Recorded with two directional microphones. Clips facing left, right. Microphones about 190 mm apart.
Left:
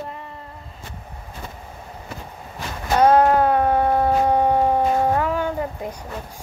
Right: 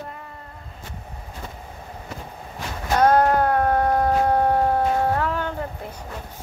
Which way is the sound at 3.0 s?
10° left (ahead or behind).